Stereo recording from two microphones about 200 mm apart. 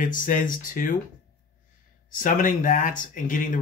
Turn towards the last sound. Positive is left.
turn(degrees=40)  # may be behind; listen again after turning